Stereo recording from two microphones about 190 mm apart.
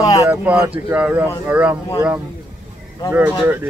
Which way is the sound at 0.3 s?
10° right (ahead or behind).